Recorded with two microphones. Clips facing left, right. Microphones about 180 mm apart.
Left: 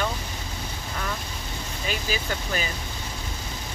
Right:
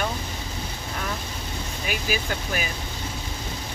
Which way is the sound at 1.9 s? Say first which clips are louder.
Right 1 dB; 10° right (ahead or behind).